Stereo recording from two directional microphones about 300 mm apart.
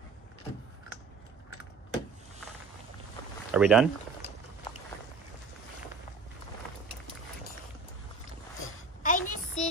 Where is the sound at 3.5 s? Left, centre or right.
Centre.